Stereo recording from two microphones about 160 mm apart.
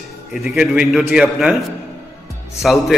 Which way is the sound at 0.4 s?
5° right (ahead or behind).